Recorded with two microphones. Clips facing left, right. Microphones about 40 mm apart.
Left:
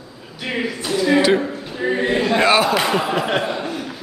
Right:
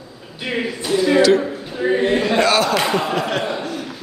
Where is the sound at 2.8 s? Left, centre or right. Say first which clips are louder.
Even; centre.